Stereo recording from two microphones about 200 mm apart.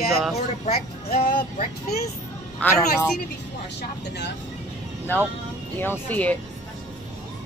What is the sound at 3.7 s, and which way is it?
Speech, 55° left (ahead or behind).